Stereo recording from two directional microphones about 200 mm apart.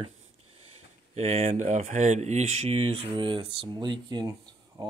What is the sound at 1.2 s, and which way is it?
Speech, 35° right (ahead or behind).